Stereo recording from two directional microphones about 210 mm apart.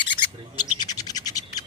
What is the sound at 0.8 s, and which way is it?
Scratch, 20° left (ahead or behind).